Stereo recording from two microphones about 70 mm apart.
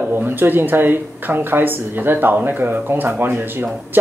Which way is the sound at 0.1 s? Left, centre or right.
Right.